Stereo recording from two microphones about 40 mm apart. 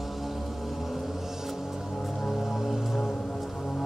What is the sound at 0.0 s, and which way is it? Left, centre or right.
Music, centre.